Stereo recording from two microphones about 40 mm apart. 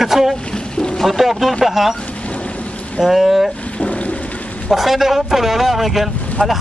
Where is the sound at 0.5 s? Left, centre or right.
Left.